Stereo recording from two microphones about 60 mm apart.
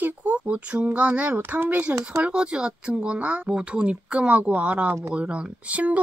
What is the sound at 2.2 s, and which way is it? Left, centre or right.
Speech, centre.